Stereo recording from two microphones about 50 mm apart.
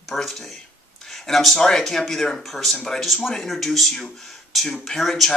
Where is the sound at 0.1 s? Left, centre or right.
Centre.